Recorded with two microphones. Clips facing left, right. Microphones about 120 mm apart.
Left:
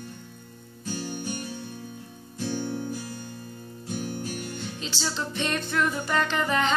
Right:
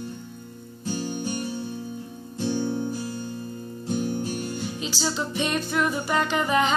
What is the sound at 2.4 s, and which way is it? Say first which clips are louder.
Music: right 4 dB; 25° right (ahead or behind).